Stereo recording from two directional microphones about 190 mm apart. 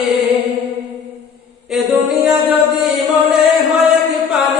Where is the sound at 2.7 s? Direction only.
Centre (ahead or behind).